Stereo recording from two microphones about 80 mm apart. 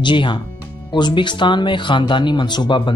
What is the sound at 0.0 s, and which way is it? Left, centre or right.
Speech, left.